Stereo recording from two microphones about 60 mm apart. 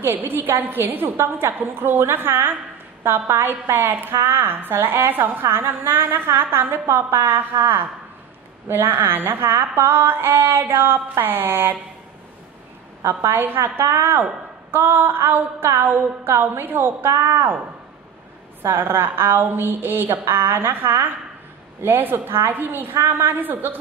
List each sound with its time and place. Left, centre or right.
0.0 s a woman's voice: right
13.3 s a woman's voice: right
18.6 s a woman's voice: right